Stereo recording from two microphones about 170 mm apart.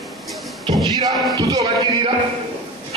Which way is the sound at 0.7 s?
25° right (ahead or behind).